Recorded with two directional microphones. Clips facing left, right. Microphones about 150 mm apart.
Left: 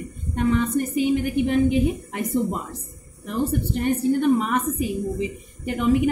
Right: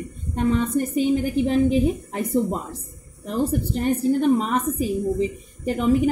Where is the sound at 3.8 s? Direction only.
30° right (ahead or behind).